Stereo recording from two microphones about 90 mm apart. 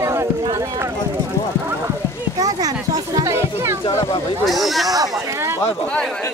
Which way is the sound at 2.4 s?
45° right (ahead or behind).